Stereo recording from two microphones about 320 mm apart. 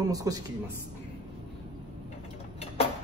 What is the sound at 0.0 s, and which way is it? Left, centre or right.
Speech, centre.